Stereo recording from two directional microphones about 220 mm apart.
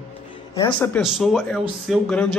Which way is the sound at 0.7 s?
5° left (ahead or behind).